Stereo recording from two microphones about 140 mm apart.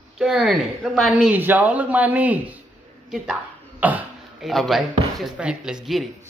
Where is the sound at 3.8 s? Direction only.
10° right (ahead or behind).